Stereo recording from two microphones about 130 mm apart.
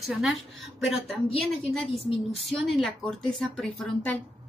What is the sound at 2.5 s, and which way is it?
Speech, centre (ahead or behind).